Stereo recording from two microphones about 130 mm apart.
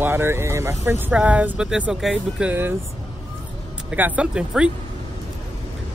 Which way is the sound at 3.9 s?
10° right (ahead or behind).